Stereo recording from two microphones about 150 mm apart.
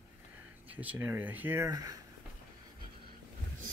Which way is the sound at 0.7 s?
10° right (ahead or behind).